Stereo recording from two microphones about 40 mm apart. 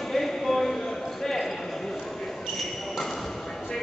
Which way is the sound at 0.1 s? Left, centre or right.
Centre.